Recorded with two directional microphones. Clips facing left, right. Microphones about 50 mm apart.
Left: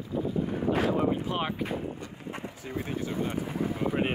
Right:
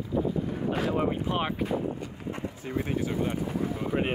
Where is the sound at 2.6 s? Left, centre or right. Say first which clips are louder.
Right 4 dB; right.